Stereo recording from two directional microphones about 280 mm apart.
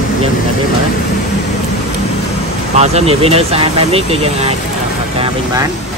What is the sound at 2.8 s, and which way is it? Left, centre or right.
Speech, right.